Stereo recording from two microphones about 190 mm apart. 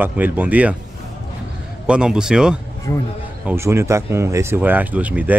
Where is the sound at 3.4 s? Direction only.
15° right (ahead or behind).